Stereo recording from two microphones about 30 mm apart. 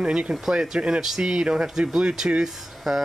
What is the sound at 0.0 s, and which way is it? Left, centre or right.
Speech, right.